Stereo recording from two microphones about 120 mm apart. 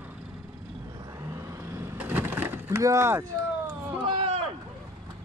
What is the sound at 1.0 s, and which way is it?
Vehicle, 25° right (ahead or behind).